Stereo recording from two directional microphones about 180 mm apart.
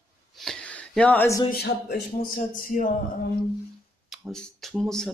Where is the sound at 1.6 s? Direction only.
55° left (ahead or behind).